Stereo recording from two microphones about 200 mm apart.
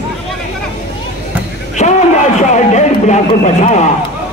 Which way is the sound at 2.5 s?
35° left (ahead or behind).